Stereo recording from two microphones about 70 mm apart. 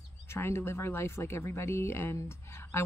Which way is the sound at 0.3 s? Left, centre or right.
Left.